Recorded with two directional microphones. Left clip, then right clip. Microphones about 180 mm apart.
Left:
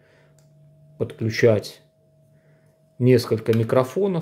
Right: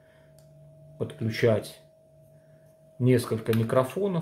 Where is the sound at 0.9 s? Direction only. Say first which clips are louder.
Left 6 dB; 30° left (ahead or behind).